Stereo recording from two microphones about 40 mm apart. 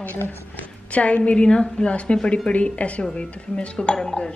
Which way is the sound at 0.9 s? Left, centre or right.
Left.